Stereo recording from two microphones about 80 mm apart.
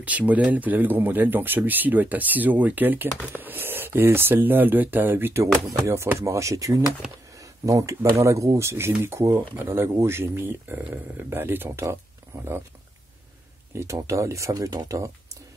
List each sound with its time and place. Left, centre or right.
0.0 s speech: centre
5.4 s speech: right
13.9 s speech: right
14.5 s speech: right